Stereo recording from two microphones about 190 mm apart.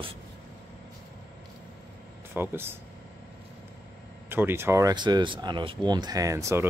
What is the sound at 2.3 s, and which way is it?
Speech, 10° right (ahead or behind).